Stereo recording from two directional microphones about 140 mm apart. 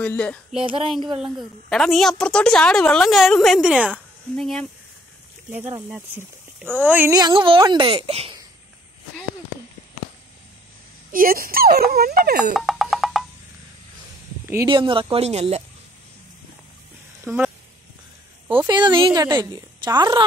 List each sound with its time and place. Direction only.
0.0 s speech: 10° left (ahead or behind)
0.7 s speech: 40° right (ahead or behind)
1.2 s a woman's voice: centre (ahead or behind)
4.4 s a woman's voice: 5° left (ahead or behind)
5.8 s speech: 10° right (ahead or behind)
7.2 s speech: 35° right (ahead or behind)
11.1 s speech: 90° right
12.5 s a sound: centre (ahead or behind)
14.7 s speech: 35° right (ahead or behind)
17.2 s speech: 15° right (ahead or behind)
18.7 s a woman's voice: 30° right (ahead or behind)